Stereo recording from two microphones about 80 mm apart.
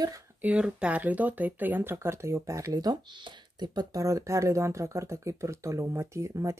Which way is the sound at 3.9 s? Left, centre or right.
Right.